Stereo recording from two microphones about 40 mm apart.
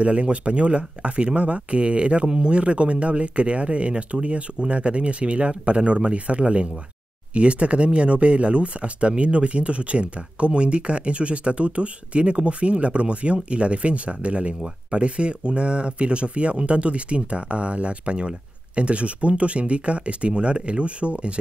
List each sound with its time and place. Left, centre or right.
0.0 s speech: right